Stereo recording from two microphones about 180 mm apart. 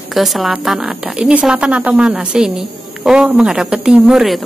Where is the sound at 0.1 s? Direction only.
Centre (ahead or behind).